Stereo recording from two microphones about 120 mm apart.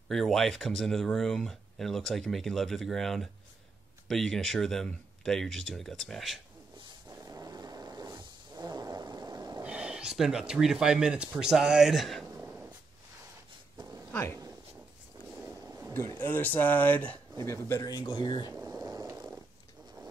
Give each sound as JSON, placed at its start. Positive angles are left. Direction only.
{"t": 0.1, "sound": "speech", "side_deg": 0}
{"t": 7.1, "sound": "roar", "side_deg": -30}
{"t": 9.6, "sound": "speech", "side_deg": -10}
{"t": 12.4, "sound": "a sound", "side_deg": -15}
{"t": 13.7, "sound": "a sound", "side_deg": -25}
{"t": 14.1, "sound": "speech", "side_deg": 20}
{"t": 15.9, "sound": "speech", "side_deg": 20}
{"t": 17.4, "sound": "speech", "side_deg": 25}
{"t": 18.5, "sound": "a sound", "side_deg": -25}